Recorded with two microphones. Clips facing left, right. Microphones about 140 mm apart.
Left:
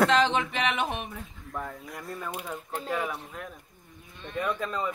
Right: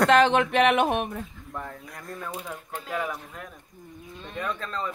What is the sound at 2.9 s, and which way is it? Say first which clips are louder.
Speech: right 1 dB; centre (ahead or behind).